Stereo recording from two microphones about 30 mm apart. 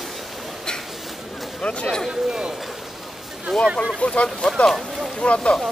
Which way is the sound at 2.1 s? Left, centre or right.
Right.